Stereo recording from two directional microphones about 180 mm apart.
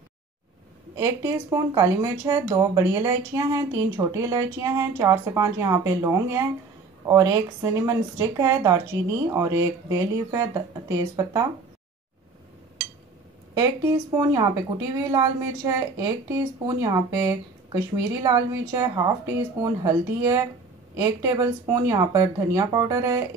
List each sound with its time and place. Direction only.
0.9 s speech: 15° right (ahead or behind)
13.6 s speech: 20° right (ahead or behind)